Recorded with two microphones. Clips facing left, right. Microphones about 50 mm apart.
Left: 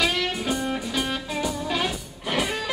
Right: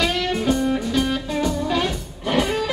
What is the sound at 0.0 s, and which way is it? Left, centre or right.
Music, centre.